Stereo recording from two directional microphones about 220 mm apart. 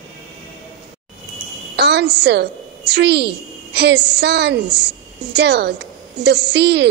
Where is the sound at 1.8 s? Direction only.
50° right (ahead or behind).